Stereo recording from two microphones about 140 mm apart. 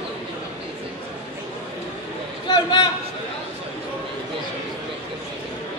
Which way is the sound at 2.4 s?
30° left (ahead or behind).